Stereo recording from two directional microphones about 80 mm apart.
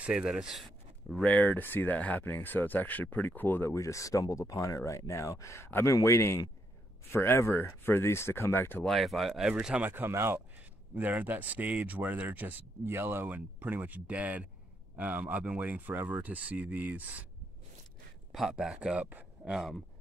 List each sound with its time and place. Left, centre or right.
0.0 s speech: centre
1.2 s speech: centre
3.7 s speech: left
8.8 s speech: centre
9.5 s a man's voice: centre
9.8 s speech: right
11.0 s speech: right
18.3 s a man's voice: centre
19.5 s speech: centre